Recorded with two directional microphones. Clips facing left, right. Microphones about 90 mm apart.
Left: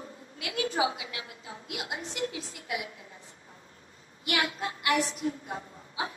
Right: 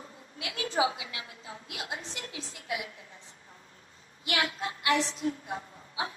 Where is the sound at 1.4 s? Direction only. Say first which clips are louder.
Left 2 dB; 25° left (ahead or behind).